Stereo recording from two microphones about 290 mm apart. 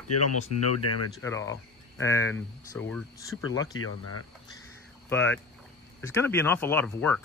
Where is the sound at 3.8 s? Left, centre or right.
Left.